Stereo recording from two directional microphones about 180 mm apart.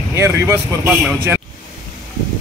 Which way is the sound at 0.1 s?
15° right (ahead or behind).